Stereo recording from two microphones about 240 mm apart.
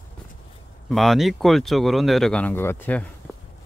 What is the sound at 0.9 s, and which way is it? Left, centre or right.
Speech, centre.